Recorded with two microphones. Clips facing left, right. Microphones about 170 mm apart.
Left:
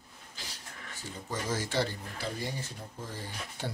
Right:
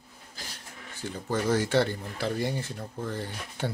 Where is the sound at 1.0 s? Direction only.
65° right (ahead or behind).